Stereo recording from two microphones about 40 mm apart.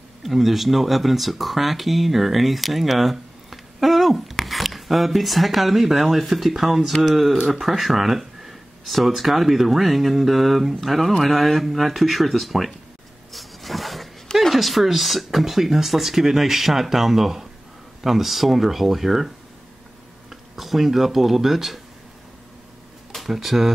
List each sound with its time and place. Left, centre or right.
0.2 s speech: centre
13.3 s a sound: centre
14.5 s speech: centre
23.2 s speech: centre